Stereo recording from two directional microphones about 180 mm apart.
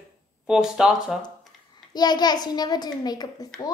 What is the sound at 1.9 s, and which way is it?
A woman's voice, 25° left (ahead or behind).